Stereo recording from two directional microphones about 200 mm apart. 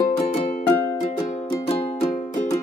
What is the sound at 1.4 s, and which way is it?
Music, 30° left (ahead or behind).